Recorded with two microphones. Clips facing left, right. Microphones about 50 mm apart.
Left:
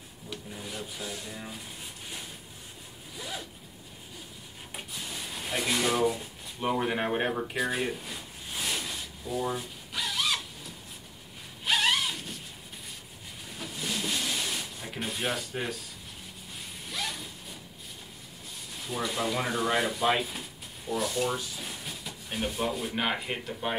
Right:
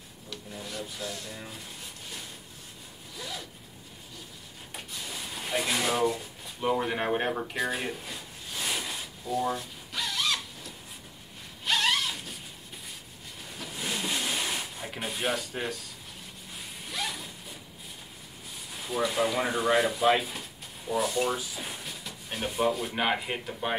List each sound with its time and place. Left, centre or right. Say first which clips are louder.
0.5 s speech: right 3 dB; centre
3.2 s zipper: left 1 dB; centre
5.1 s drawer open or close: right 2 dB; centre
7.1 s a sound: even; centre
9.3 s a sound: right 2 dB; centre
13.7 s rub: right 1 dB; centre
14.9 s speech: right 1 dB; centre
16.5 s zipper: right 1 dB; centre
18.7 s speech: right 3 dB; centre
20.9 s speech: right 2 dB; centre